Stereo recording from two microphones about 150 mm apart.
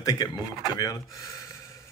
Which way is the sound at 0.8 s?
25° left (ahead or behind).